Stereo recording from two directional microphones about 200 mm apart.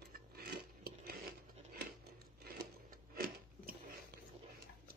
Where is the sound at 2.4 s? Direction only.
45° right (ahead or behind).